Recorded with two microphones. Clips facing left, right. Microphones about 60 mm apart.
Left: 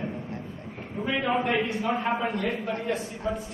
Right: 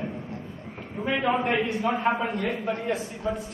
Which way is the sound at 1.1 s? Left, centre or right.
Centre.